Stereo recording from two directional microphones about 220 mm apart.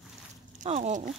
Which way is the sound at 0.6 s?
35° right (ahead or behind).